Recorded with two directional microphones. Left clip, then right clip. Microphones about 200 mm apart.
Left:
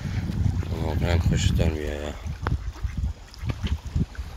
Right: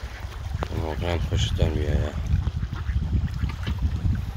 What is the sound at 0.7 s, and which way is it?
Speech, centre (ahead or behind).